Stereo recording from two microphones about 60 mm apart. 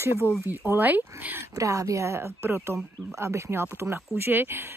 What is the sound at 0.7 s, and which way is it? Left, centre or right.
Speech, right.